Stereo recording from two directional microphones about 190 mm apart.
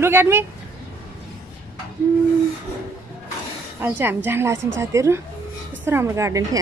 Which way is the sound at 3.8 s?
10° right (ahead or behind).